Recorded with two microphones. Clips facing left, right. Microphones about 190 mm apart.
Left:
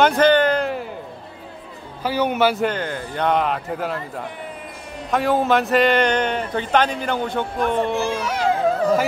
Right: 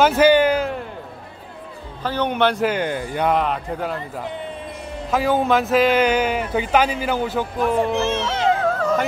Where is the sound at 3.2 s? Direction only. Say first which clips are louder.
Left 1 dB; centre (ahead or behind).